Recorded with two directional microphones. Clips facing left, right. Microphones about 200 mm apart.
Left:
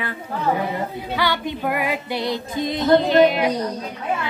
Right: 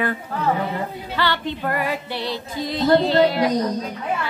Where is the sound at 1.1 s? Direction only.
10° left (ahead or behind).